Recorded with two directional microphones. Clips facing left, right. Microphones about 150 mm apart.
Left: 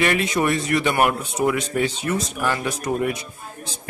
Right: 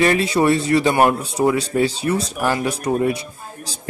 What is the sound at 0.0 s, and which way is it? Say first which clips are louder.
A man's voice: right 4 dB; 30° right (ahead or behind).